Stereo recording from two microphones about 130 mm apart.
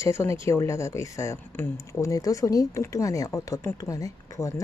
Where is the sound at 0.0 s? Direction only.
20° left (ahead or behind).